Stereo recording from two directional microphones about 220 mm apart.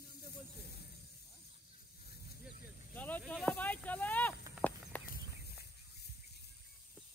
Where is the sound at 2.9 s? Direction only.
5° left (ahead or behind).